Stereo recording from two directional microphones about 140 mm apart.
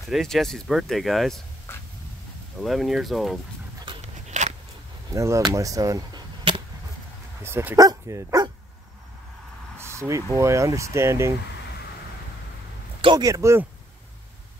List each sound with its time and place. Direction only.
0.1 s speech: centre (ahead or behind)
1.7 s a sound: 15° left (ahead or behind)
2.6 s speech: centre (ahead or behind)
4.0 s a sound: 55° right (ahead or behind)
5.1 s speech: 20° right (ahead or behind)
7.4 s speech: 15° right (ahead or behind)
9.8 s vehicle: 20° right (ahead or behind)
10.3 s speech: 20° right (ahead or behind)
13.0 s speech: 30° right (ahead or behind)